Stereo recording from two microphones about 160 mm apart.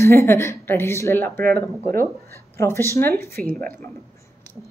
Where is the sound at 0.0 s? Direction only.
15° left (ahead or behind).